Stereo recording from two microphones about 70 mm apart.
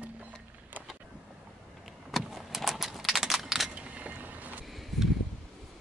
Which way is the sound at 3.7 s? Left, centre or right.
Centre.